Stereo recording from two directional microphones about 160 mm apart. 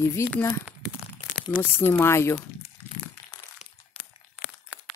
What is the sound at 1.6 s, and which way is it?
Speech, 15° left (ahead or behind).